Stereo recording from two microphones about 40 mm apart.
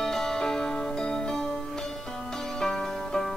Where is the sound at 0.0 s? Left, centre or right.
Centre.